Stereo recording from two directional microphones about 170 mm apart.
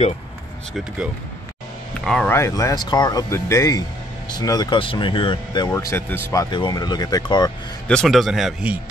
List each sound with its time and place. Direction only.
2.0 s speech: 5° left (ahead or behind)
2.3 s speech: 15° left (ahead or behind)
6.5 s speech: 25° left (ahead or behind)
7.9 s speech: centre (ahead or behind)